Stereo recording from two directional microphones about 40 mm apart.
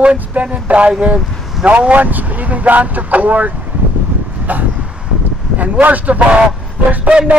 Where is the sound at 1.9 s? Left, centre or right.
Right.